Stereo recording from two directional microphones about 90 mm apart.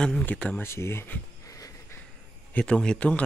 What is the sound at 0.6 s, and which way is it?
Speech, 30° left (ahead or behind).